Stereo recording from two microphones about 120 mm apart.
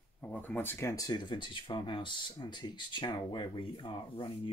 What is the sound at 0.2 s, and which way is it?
Speech, 10° left (ahead or behind).